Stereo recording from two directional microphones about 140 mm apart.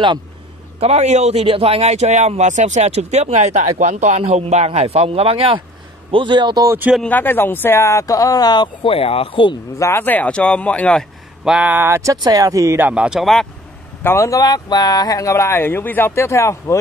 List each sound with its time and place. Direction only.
0.7 s a man's voice: 50° right (ahead or behind); by 6.7 s 30° right (ahead or behind)
7.1 s speech: 15° left (ahead or behind); by 9.6 s 40° left (ahead or behind)
9.8 s speech: 20° left (ahead or behind)
11.4 s speech: 10° right (ahead or behind)
14.0 s speech: 20° left (ahead or behind)